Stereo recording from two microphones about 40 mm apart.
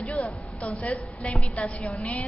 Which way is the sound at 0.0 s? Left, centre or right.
Left.